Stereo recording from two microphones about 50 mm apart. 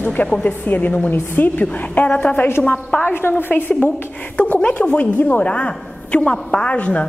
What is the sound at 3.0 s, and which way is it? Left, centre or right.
Speech, left.